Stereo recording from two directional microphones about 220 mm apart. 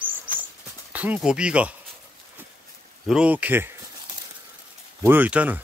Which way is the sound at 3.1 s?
5° right (ahead or behind).